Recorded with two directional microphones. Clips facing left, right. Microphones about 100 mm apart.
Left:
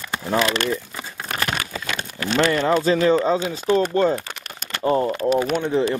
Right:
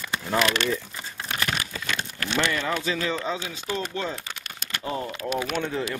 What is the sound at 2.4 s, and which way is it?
Speech, 40° left (ahead or behind).